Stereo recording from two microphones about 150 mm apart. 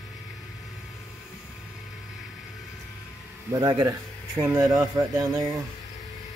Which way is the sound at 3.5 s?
20° right (ahead or behind).